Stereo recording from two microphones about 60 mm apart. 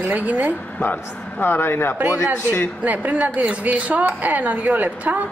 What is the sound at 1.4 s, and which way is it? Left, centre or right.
Speech, left.